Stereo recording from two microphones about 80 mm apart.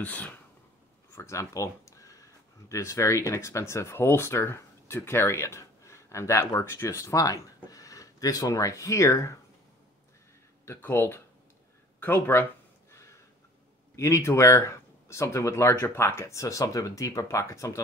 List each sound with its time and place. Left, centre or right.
0.0 s speech: left
1.1 s a sound: left
2.7 s speech: left
10.6 s speech: left
13.9 s speech: left